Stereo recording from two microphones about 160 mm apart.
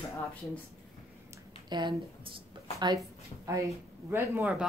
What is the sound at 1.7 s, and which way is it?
Speech, 30° right (ahead or behind).